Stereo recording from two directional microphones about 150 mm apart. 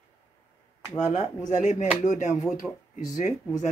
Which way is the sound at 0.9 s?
55° left (ahead or behind).